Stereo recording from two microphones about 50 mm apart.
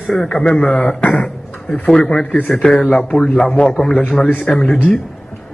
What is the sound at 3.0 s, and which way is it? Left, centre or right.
Speech, centre.